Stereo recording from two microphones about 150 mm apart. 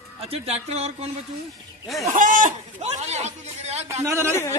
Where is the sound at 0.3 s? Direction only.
45° right (ahead or behind).